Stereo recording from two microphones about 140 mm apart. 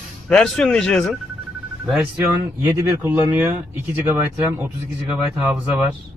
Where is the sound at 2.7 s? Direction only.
15° right (ahead or behind).